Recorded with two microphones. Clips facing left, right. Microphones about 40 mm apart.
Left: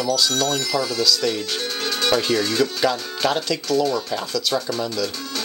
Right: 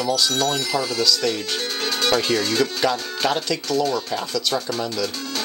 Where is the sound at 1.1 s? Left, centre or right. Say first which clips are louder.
Even; centre.